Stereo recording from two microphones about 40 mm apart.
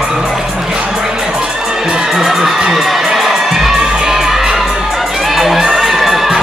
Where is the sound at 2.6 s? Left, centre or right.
Centre.